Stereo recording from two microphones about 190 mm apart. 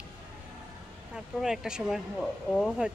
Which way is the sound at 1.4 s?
5° right (ahead or behind).